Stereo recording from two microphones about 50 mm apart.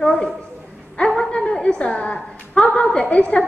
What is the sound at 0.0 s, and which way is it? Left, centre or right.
Speech, centre.